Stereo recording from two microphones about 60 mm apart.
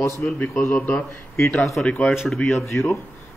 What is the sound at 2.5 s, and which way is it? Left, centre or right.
Speech, left.